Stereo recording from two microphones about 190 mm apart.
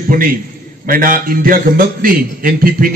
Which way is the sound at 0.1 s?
50° right (ahead or behind).